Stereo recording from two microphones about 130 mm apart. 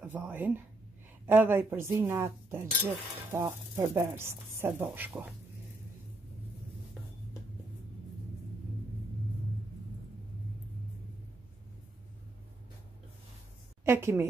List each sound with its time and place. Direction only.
0.0 s a woman's voice: 15° right (ahead or behind)
13.8 s a woman's voice: 20° right (ahead or behind)